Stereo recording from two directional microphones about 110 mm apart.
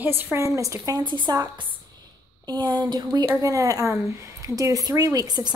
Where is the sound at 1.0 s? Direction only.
45° right (ahead or behind).